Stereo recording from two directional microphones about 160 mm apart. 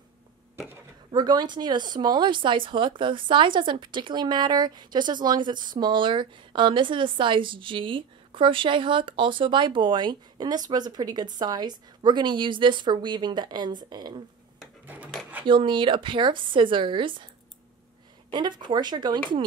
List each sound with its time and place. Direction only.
1.1 s speech: 25° right (ahead or behind)
15.4 s speech: 30° right (ahead or behind)
18.3 s speech: 30° right (ahead or behind)